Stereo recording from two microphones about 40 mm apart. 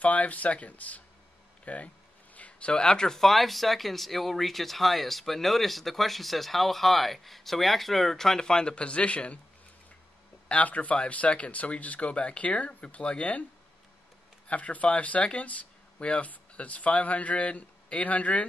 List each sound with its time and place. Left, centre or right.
0.0 s speech: left
2.3 s a sound: left
2.7 s speech: centre
10.5 s speech: left
14.5 s speech: left